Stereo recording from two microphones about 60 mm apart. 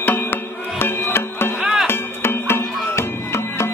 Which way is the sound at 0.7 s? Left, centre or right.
Left.